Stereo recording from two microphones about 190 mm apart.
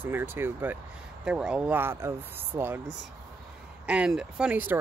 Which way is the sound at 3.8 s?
5° right (ahead or behind).